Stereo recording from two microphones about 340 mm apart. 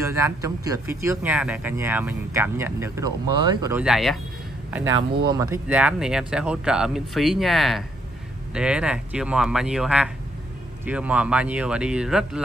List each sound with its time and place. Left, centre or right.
0.0 s speech: centre
4.9 s speech: right
5.3 s speech: centre